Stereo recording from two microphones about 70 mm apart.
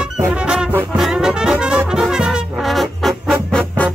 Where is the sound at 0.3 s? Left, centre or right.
Centre.